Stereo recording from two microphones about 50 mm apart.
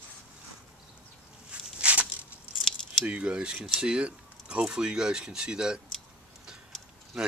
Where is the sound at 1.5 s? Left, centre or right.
Right.